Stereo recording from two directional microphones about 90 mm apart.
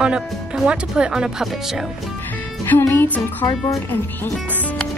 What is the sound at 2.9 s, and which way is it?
Music, 15° left (ahead or behind).